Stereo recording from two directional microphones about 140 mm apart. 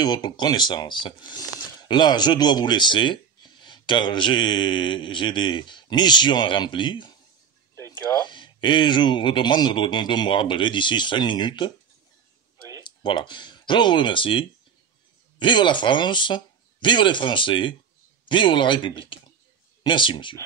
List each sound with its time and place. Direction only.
0.0 s speech: 30° left (ahead or behind)
12.8 s speech: 35° left (ahead or behind)